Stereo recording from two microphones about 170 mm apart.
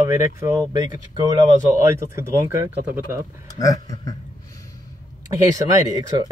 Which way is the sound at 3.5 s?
20° left (ahead or behind).